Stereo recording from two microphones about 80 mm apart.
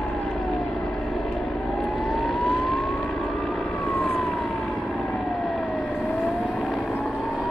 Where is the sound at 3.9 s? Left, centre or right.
Left.